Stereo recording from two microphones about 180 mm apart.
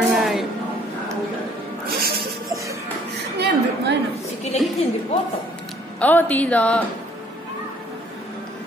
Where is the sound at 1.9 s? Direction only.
55° right (ahead or behind).